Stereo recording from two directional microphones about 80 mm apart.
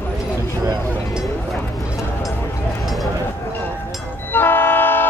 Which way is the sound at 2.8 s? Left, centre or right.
Centre.